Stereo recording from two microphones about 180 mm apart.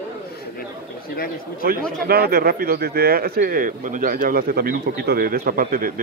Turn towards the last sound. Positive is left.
turn(degrees=-50)  # may be behind; listen again after turning